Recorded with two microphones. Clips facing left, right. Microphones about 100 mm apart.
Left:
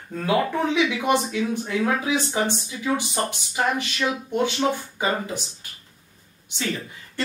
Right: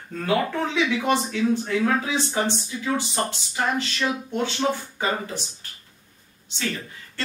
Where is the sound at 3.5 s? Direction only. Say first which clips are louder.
Left 2 dB; 15° left (ahead or behind).